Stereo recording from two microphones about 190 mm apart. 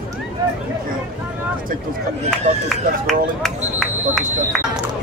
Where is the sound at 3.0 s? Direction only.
Centre (ahead or behind).